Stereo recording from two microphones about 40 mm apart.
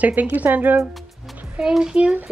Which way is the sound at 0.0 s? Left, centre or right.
Right.